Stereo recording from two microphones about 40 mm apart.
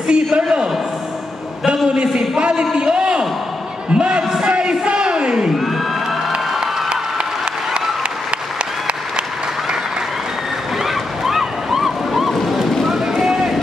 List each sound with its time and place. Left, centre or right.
0.1 s a man's voice: right
2.0 s a man's voice: right
3.9 s a sound: right
10.8 s waves: centre
12.8 s run: centre